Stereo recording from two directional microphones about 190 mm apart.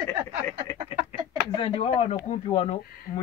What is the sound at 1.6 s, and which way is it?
Speech, 30° left (ahead or behind).